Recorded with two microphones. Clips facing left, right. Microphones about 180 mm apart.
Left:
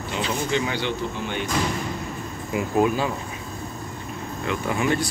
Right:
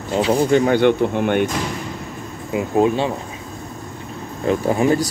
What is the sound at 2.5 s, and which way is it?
Speech, 25° right (ahead or behind).